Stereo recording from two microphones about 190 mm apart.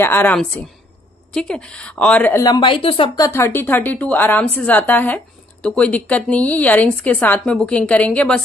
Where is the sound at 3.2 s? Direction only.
15° left (ahead or behind).